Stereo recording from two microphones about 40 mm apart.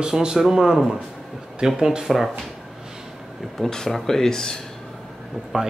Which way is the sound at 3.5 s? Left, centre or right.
Centre.